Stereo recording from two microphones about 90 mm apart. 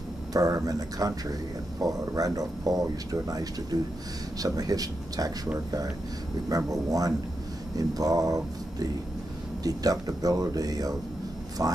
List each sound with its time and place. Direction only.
0.3 s speech: 40° right (ahead or behind)
6.5 s speech: 40° right (ahead or behind)